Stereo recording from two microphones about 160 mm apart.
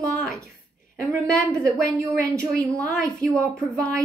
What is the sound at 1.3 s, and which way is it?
Speech, 5° left (ahead or behind).